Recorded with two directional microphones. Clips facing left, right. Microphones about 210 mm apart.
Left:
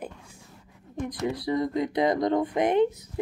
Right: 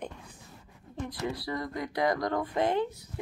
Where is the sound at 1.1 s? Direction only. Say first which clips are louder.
Left 7 dB; 20° left (ahead or behind).